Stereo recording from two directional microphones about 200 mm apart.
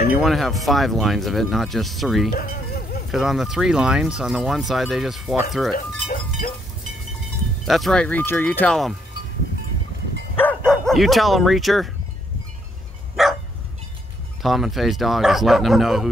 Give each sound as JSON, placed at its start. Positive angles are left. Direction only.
{"t": 0.1, "sound": "speech", "side_deg": 0}
{"t": 2.3, "sound": "music", "side_deg": 45}
{"t": 3.1, "sound": "speech", "side_deg": 0}
{"t": 7.6, "sound": "speech", "side_deg": 0}
{"t": 10.3, "sound": "bow-wow", "side_deg": 5}
{"t": 13.1, "sound": "dog", "side_deg": 0}
{"t": 14.4, "sound": "speech", "side_deg": 0}